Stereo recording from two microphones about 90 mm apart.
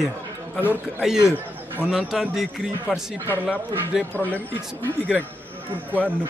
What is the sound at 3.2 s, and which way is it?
Speech, 20° left (ahead or behind).